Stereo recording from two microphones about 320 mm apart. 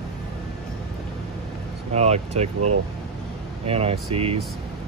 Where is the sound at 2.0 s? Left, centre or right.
Centre.